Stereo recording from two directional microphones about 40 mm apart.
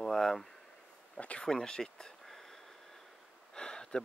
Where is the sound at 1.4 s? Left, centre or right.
Centre.